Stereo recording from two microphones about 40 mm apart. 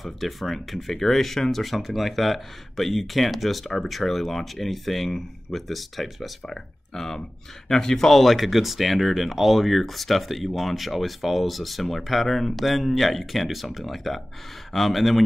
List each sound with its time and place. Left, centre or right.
0.0 s speech: centre
6.4 s speech: centre